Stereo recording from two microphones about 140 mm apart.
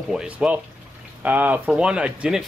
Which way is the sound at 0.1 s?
5° right (ahead or behind).